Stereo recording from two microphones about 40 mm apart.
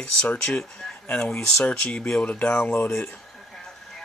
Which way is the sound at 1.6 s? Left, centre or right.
Left.